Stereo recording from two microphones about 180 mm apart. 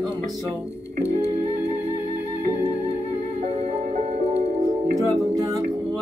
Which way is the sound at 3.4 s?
35° right (ahead or behind).